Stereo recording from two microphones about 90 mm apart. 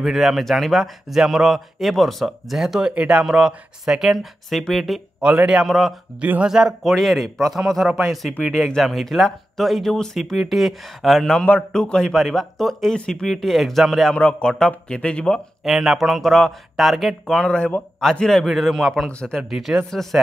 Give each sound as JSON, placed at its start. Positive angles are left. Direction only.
{"t": 0.0, "sound": "speech", "side_deg": 0}
{"t": 5.2, "sound": "a man's voice", "side_deg": -15}
{"t": 5.6, "sound": "speech", "side_deg": 0}
{"t": 6.2, "sound": "a man's voice", "side_deg": -15}
{"t": 6.5, "sound": "speech", "side_deg": -5}
{"t": 14.1, "sound": "speech", "side_deg": 10}
{"t": 15.6, "sound": "speech", "side_deg": -5}
{"t": 19.5, "sound": "speech", "side_deg": -5}